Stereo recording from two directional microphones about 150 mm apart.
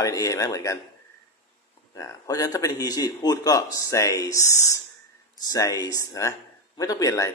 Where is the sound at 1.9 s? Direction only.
20° left (ahead or behind).